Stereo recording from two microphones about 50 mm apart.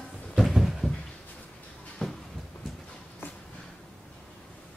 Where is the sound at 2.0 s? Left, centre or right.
Centre.